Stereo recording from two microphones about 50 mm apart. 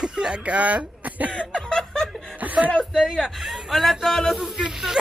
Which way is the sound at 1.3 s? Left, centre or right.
Centre.